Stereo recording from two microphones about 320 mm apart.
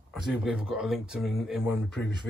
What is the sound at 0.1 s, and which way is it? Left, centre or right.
Speech, centre.